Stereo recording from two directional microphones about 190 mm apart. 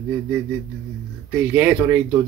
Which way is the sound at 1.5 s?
10° right (ahead or behind).